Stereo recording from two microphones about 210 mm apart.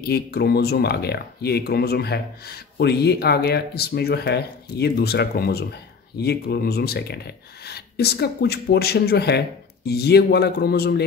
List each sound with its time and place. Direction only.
0.0 s speech: 50° left (ahead or behind)